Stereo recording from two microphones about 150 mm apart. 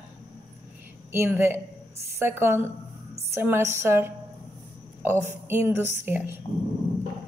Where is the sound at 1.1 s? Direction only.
15° right (ahead or behind).